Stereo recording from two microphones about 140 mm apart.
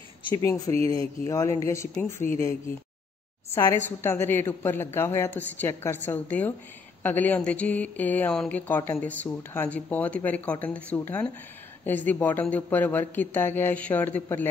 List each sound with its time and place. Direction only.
0.4 s speech: 20° left (ahead or behind)
3.5 s speech: 20° left (ahead or behind)